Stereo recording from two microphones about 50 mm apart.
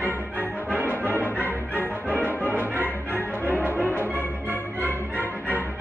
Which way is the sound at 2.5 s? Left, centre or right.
Right.